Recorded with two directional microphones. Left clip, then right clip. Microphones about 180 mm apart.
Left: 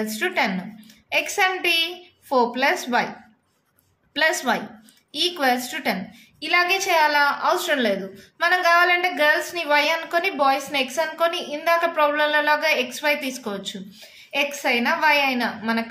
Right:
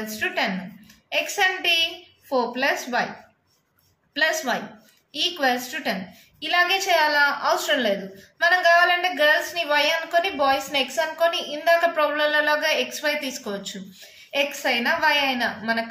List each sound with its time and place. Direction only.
0.0 s a woman's voice: 40° left (ahead or behind)
4.1 s a woman's voice: 40° left (ahead or behind)